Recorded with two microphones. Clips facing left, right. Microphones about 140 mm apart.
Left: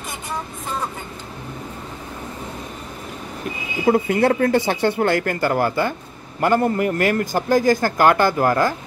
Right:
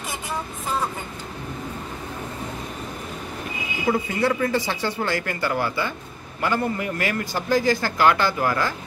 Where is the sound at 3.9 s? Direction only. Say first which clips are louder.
Left 5 dB; 55° left (ahead or behind).